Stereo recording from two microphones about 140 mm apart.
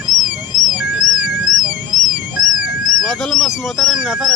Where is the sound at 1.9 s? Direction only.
70° left (ahead or behind).